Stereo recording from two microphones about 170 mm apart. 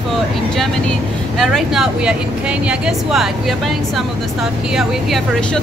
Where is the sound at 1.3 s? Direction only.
Centre (ahead or behind).